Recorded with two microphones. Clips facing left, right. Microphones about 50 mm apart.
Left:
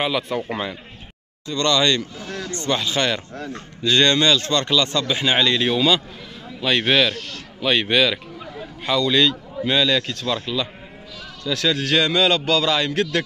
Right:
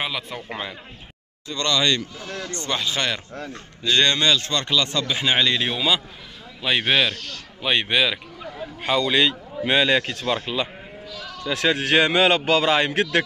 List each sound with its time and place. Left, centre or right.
0.0 s a man's voice: centre
8.8 s a man's voice: centre